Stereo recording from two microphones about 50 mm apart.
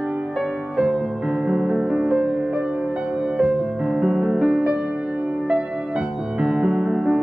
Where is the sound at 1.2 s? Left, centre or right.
Centre.